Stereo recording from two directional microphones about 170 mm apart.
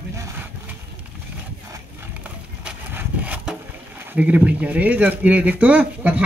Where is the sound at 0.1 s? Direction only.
15° right (ahead or behind).